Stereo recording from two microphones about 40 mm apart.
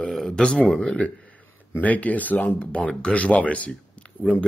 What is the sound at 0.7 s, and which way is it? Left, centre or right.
Speech, left.